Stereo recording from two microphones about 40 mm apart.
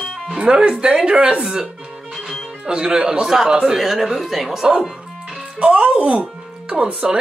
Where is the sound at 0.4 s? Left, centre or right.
Right; by 4.6 s centre.